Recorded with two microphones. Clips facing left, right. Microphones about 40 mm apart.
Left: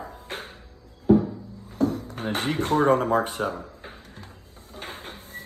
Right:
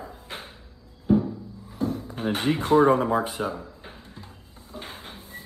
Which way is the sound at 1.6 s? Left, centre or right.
Left.